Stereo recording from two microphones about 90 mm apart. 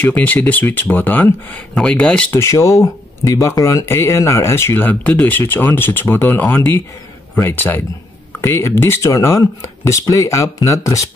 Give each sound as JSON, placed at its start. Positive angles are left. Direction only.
{"t": 0.0, "sound": "speech", "side_deg": 20}
{"t": 1.8, "sound": "speech", "side_deg": 10}
{"t": 2.3, "sound": "speech", "side_deg": 30}